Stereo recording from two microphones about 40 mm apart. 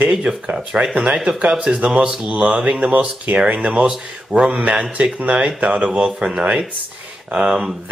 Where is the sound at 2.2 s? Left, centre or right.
Right.